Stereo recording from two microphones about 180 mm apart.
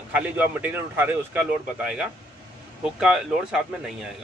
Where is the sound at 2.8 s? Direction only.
5° right (ahead or behind).